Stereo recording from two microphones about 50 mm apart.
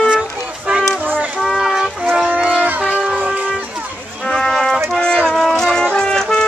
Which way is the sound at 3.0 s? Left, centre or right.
Centre.